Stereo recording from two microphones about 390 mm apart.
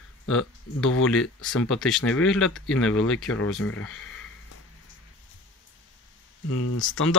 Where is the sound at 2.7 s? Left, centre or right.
Left.